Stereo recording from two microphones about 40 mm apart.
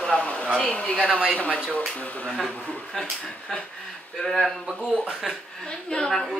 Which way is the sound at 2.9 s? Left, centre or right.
Centre.